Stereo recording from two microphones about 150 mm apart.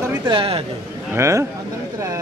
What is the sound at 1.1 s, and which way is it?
Speech, 20° right (ahead or behind).